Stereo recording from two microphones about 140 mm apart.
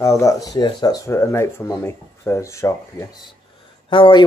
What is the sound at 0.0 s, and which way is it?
Speech, 20° left (ahead or behind).